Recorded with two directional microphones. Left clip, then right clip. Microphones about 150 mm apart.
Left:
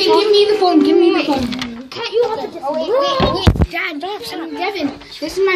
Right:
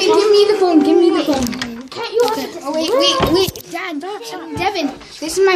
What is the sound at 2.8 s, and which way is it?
Speech, 90° right.